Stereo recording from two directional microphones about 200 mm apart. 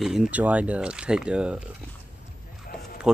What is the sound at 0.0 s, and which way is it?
Speech, 5° right (ahead or behind).